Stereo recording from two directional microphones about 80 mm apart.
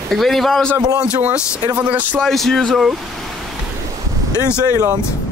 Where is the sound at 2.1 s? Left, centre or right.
Centre.